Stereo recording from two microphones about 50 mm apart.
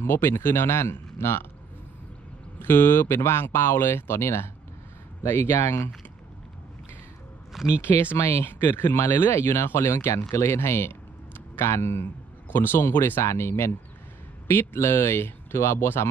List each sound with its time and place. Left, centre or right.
0.0 s speech: left
2.6 s speech: left
7.5 s speech: centre
8.3 s speech: left
9.8 s speech: left
12.4 s speech: left
13.2 s speech: left